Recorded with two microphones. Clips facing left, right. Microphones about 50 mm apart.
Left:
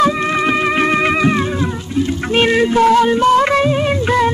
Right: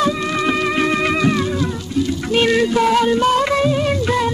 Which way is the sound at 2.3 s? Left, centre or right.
Left.